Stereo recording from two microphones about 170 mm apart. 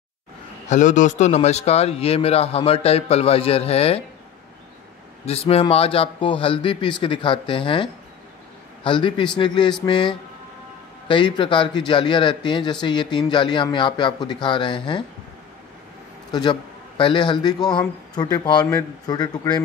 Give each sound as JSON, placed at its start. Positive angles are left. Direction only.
{"t": 0.7, "sound": "a man's voice", "side_deg": 45}
{"t": 5.2, "sound": "a man's voice", "side_deg": 35}
{"t": 16.3, "sound": "a man's voice", "side_deg": 25}